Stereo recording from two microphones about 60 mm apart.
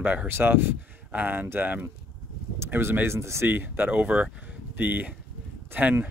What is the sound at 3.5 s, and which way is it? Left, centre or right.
Speech, right.